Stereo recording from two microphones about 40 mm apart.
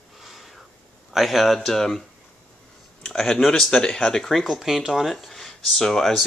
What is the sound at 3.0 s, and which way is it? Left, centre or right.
Speech, centre.